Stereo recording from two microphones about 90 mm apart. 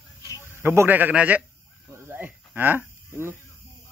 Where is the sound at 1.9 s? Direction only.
25° right (ahead or behind).